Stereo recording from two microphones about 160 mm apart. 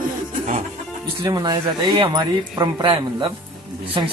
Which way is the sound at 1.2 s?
25° right (ahead or behind).